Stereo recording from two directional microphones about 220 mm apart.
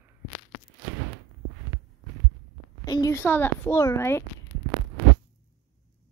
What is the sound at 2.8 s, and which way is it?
A woman's voice, 15° left (ahead or behind).